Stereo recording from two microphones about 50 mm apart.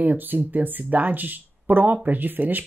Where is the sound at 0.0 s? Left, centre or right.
Right.